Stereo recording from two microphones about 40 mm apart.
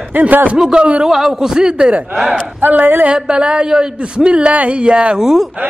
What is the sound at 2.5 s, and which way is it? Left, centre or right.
Speech, right.